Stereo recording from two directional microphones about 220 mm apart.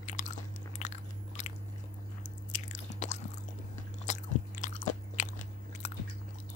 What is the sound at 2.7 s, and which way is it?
Chewing, 35° left (ahead or behind).